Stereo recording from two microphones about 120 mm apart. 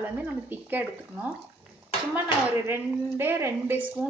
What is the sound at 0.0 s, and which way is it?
A woman's voice, 15° right (ahead or behind).